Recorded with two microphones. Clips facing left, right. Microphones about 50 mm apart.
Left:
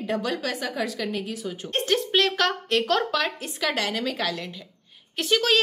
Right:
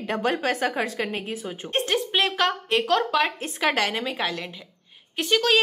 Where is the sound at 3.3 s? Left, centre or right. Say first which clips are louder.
Right 3 dB; right.